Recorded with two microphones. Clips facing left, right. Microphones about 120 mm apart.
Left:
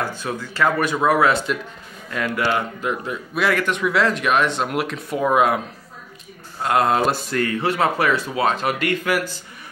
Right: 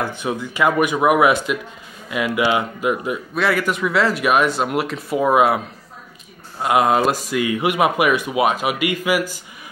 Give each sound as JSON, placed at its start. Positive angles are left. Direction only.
{"t": 0.0, "sound": "speech", "side_deg": -20}
{"t": 6.6, "sound": "speech", "side_deg": -10}